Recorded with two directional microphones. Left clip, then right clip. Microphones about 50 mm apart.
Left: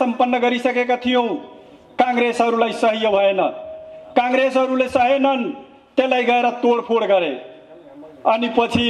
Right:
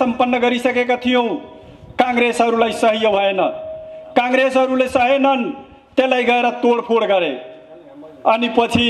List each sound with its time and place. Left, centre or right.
0.0 s a man's voice: right